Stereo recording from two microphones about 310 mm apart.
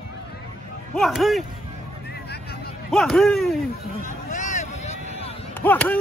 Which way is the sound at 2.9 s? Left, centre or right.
Centre.